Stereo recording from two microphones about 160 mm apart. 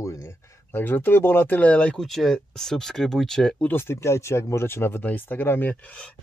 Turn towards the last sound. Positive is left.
turn(degrees=10)  # may be behind; listen again after turning